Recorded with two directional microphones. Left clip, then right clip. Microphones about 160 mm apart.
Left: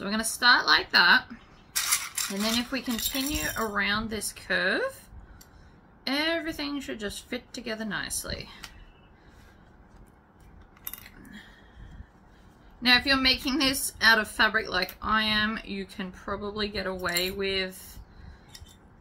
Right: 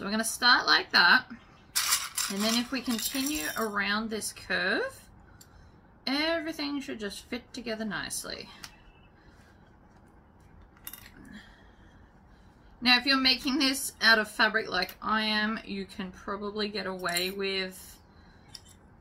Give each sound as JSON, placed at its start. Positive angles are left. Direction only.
{"t": 0.0, "sound": "speech", "side_deg": 5}
{"t": 1.7, "sound": "mechanisms", "side_deg": -15}
{"t": 2.4, "sound": "a woman's voice", "side_deg": 5}
{"t": 6.0, "sound": "a woman's voice", "side_deg": 10}
{"t": 12.8, "sound": "a woman's voice", "side_deg": 10}